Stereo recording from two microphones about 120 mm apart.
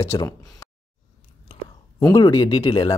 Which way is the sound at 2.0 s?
30° left (ahead or behind).